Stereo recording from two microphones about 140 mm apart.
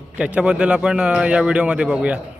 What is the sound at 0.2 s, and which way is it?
Speech, 10° right (ahead or behind).